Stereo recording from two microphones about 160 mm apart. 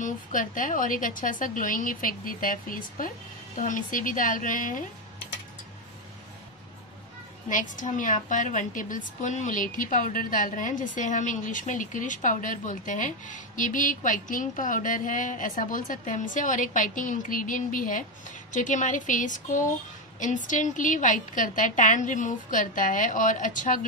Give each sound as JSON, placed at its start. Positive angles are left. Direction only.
{"t": 0.0, "sound": "a woman's voice", "side_deg": 55}
{"t": 7.4, "sound": "a woman's voice", "side_deg": 55}